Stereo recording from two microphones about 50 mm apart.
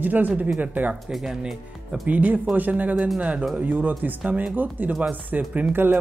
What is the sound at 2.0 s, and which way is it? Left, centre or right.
Speech, right.